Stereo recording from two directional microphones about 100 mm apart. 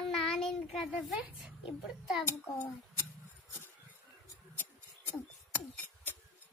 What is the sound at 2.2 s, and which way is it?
Speech, 25° left (ahead or behind).